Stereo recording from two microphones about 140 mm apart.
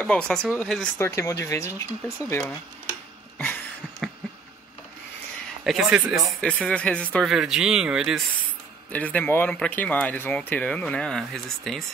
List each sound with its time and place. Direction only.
0.0 s speech: 5° left (ahead or behind)
0.9 s speech: 20° left (ahead or behind)
5.6 s speech: centre (ahead or behind)
6.4 s speech: 10° left (ahead or behind)
7.2 s speech: 5° right (ahead or behind)
8.9 s speech: 10° left (ahead or behind)